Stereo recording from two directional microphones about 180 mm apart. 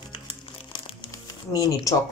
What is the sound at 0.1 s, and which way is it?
Music, 30° left (ahead or behind).